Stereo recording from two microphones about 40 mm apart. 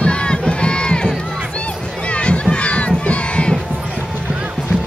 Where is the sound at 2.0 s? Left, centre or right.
Left.